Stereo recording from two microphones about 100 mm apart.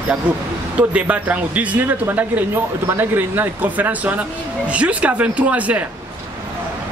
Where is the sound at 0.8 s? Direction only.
15° right (ahead or behind).